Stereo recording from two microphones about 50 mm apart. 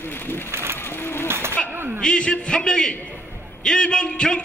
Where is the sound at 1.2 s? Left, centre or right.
Right.